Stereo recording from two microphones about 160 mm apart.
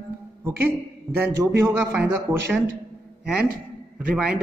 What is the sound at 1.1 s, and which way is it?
A man's voice, 15° right (ahead or behind).